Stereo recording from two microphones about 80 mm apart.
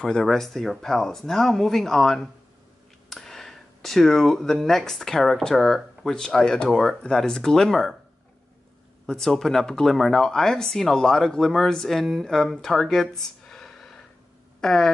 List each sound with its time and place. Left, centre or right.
0.0 s speech: centre
9.0 s speech: centre